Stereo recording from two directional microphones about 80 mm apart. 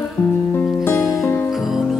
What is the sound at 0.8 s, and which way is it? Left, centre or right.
Music, left.